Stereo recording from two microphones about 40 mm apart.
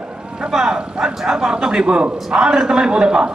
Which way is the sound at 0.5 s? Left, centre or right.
Centre.